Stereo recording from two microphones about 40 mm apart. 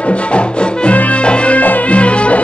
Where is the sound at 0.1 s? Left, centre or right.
Left.